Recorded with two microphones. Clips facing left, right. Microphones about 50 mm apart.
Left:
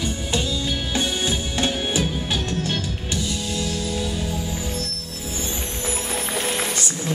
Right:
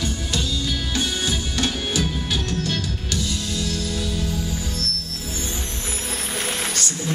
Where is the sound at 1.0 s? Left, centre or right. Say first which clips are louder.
Left 1 dB; left.